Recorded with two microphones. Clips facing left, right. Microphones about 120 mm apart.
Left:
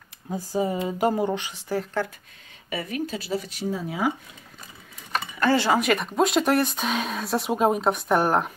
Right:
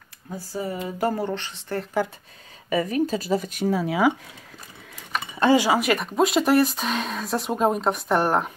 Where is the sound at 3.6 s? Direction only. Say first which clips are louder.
Right 6 dB; 75° right (ahead or behind).